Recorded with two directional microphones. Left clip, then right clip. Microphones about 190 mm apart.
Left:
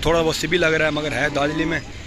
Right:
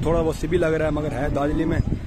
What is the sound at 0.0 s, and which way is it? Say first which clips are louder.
A man's voice: left 3 dB; 5° right (ahead or behind).